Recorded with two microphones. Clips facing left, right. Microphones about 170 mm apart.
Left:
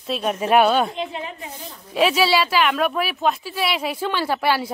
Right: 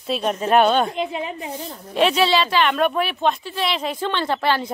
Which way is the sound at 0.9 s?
15° right (ahead or behind).